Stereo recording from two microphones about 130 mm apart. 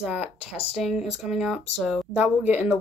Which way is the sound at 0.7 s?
Centre (ahead or behind).